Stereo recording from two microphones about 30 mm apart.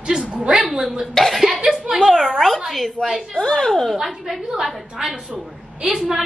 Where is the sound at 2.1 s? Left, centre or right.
Centre.